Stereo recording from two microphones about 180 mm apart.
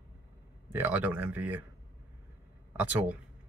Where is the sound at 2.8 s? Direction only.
10° right (ahead or behind).